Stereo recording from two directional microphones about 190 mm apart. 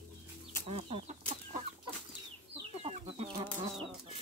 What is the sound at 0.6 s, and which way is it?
Chicken, 30° right (ahead or behind).